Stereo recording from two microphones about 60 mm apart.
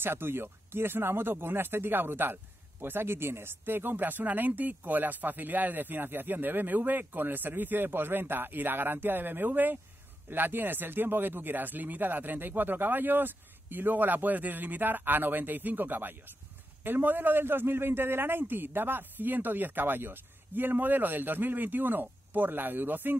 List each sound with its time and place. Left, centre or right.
0.0 s speech: right